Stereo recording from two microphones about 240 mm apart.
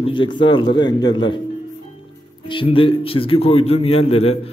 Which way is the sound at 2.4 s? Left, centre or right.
Left.